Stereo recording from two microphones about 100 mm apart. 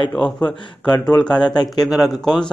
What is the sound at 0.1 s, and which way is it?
A man's voice, 10° left (ahead or behind).